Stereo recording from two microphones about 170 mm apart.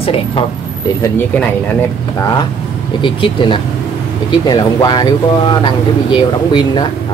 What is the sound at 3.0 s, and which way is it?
Speech, 30° left (ahead or behind).